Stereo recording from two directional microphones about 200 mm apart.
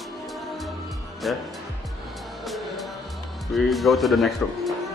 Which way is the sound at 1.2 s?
Centre (ahead or behind).